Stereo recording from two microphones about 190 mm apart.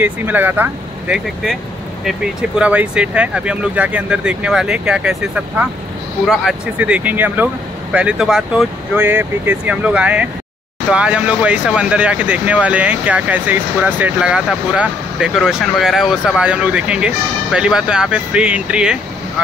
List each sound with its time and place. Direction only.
0.0 s speech: 10° right (ahead or behind)
2.6 s speech: 5° right (ahead or behind)